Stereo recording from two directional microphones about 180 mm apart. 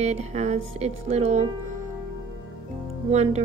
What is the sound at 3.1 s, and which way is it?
Speech, 35° right (ahead or behind).